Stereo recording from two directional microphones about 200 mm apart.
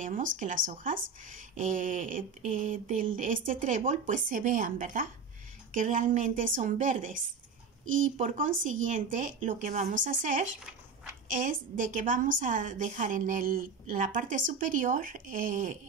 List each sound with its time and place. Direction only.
0.0 s a woman's voice: 40° right (ahead or behind)